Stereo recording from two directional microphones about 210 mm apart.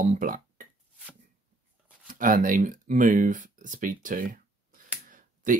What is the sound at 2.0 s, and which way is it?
Speech, 40° right (ahead or behind).